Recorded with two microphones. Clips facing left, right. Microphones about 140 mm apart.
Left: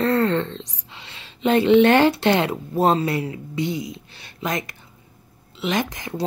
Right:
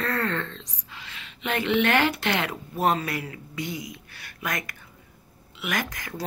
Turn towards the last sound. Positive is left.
turn(degrees=25)  # may be behind; listen again after turning